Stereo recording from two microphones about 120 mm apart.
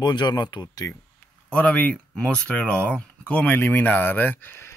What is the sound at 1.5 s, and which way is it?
Speech, 10° left (ahead or behind).